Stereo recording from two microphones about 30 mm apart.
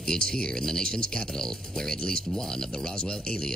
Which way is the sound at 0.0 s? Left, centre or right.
Left.